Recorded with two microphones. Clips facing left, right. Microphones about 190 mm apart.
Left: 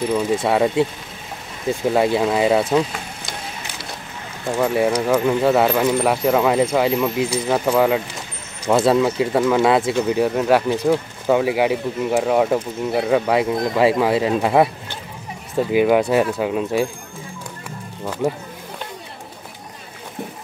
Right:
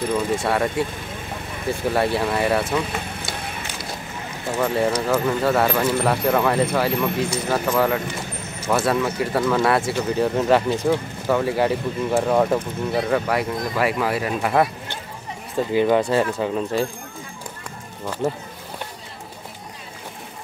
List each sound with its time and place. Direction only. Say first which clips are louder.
0.1 s speech: left 3 dB; 15° left (ahead or behind)
4.6 s speech: left 3 dB; 15° left (ahead or behind)
13.3 s speech: left 5 dB; 20° left (ahead or behind)
15.7 s speech: left 2 dB; 10° left (ahead or behind)